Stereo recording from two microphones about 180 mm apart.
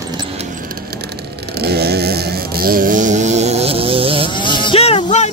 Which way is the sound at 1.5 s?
60° right (ahead or behind).